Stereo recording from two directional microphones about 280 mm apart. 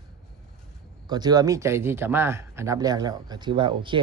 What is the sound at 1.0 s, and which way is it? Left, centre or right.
Speech, centre.